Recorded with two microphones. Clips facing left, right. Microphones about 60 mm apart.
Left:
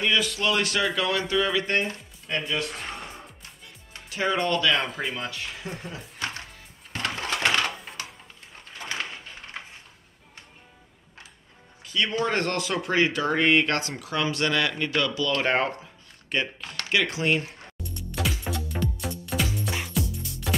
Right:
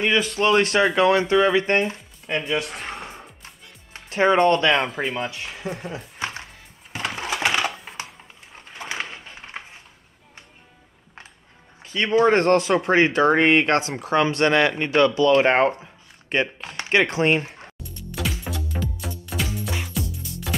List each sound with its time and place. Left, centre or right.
0.0 s speech: right
2.7 s music: centre
3.9 s speech: right
5.0 s speech: centre
6.9 s a sound: centre
8.5 s a sound: centre
11.8 s speech: right
17.9 s music: centre